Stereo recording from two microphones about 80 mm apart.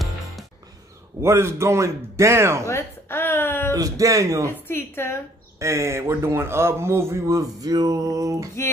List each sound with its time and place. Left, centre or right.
1.2 s speech: right
2.7 s a sound: left
3.7 s a man's voice: right
4.6 s a woman's voice: left
5.6 s speech: right